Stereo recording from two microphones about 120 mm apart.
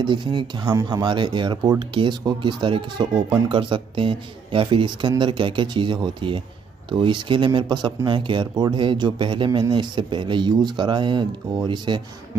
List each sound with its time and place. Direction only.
0.0 s a man's voice: 40° right (ahead or behind)